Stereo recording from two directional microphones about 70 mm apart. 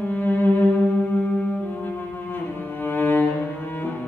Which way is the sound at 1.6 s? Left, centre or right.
Left.